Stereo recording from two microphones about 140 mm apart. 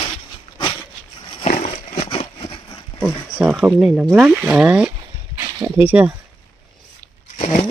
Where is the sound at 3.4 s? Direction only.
10° right (ahead or behind).